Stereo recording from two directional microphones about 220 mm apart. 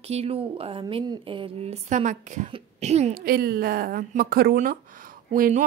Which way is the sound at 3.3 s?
45° right (ahead or behind).